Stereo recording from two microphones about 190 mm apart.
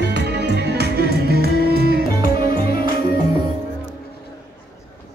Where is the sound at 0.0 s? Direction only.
60° right (ahead or behind).